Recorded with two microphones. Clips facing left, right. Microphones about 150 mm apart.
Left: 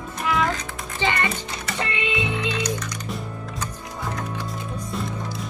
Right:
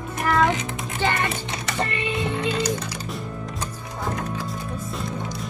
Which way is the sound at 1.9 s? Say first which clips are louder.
Even; 80° left.